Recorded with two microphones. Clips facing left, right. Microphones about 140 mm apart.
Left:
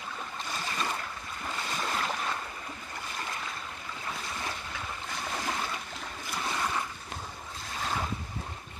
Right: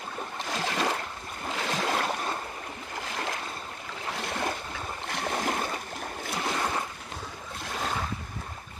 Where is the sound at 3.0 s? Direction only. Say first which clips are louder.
Right 5 dB; 85° right.